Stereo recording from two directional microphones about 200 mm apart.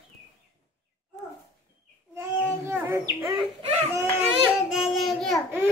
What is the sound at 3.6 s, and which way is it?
Speech, 35° right (ahead or behind).